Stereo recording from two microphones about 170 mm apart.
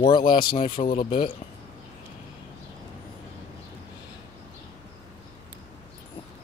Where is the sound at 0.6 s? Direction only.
30° left (ahead or behind).